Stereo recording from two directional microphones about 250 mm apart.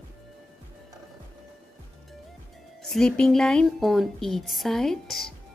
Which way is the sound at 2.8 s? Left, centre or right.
Centre.